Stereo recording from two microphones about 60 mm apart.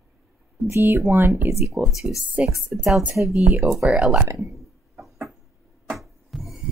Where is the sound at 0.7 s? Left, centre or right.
Right.